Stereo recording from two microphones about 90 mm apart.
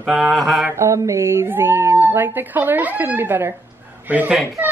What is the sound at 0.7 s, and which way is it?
Speech, 35° right (ahead or behind).